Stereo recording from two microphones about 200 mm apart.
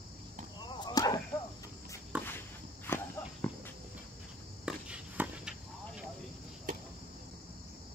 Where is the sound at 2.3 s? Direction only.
10° left (ahead or behind).